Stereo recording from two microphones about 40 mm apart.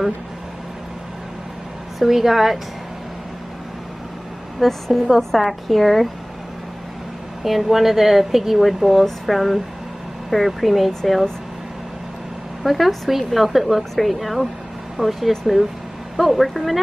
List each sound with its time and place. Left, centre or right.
2.0 s a woman's voice: centre
4.6 s speech: centre
7.4 s speech: centre
12.6 s speech: centre